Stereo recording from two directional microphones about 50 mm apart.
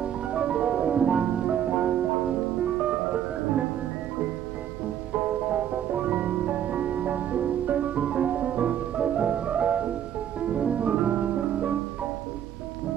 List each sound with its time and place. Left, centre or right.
0.0 s music: right
5.1 s music: right